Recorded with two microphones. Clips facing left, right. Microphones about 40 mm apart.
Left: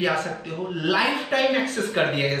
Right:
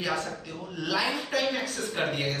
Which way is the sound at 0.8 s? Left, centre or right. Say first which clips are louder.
Left 6 dB; left.